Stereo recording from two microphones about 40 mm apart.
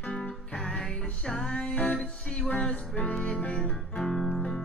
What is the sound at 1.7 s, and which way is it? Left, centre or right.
Music, left.